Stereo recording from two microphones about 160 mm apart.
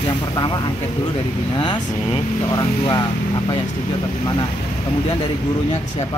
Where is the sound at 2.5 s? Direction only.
25° left (ahead or behind).